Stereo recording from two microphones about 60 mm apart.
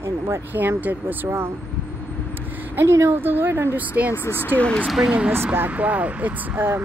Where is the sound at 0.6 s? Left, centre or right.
Right.